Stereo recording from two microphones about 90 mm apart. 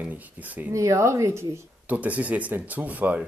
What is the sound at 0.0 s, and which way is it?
Speech, 20° right (ahead or behind).